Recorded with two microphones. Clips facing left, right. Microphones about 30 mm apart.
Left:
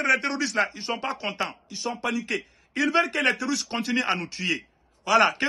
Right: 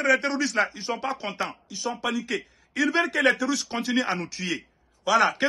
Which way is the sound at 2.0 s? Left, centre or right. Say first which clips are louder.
Left 1 dB; centre.